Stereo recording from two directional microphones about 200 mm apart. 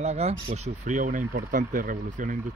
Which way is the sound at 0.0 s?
30° right (ahead or behind).